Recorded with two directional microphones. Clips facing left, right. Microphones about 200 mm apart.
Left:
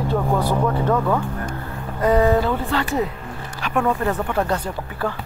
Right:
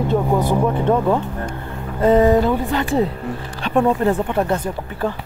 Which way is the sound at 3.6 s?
30° right (ahead or behind).